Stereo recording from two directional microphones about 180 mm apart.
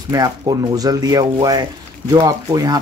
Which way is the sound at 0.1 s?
20° right (ahead or behind).